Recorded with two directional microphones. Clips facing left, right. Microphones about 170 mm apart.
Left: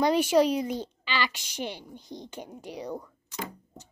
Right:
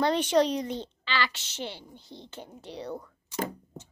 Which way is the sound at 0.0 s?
10° left (ahead or behind).